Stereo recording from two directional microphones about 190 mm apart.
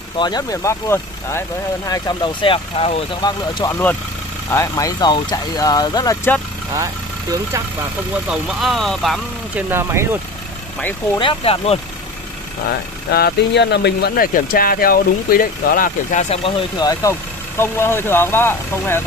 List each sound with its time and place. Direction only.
0.2 s speech: 20° left (ahead or behind)
8.3 s speech: centre (ahead or behind)
9.7 s speech: 15° right (ahead or behind)
11.1 s speech: 25° left (ahead or behind)
13.1 s speech: 60° left (ahead or behind); by 19.0 s 10° left (ahead or behind)